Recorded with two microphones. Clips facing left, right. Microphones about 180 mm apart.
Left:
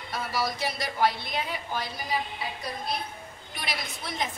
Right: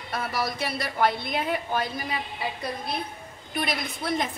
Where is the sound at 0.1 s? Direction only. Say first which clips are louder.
Right 1 dB; 55° right (ahead or behind).